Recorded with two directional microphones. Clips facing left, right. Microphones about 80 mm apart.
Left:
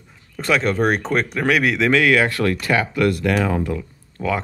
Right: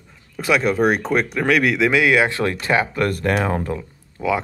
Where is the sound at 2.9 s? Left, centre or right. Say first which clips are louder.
Left 1 dB; right.